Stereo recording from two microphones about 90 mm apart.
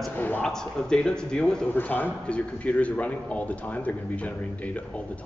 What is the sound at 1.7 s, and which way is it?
A man's voice, 20° left (ahead or behind).